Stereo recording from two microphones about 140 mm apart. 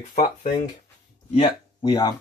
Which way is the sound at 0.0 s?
60° left (ahead or behind).